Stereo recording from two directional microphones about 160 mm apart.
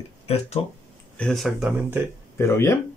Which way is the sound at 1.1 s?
5° left (ahead or behind).